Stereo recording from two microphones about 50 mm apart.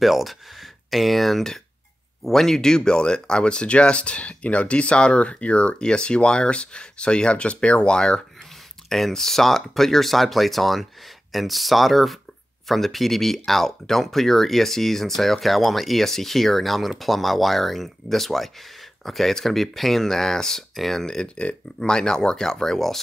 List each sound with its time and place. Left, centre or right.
0.0 s speech: centre
8.8 s speech: centre